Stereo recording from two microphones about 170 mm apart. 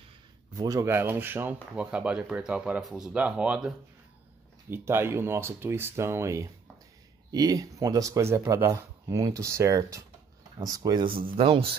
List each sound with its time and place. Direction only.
0.6 s speech: 20° right (ahead or behind)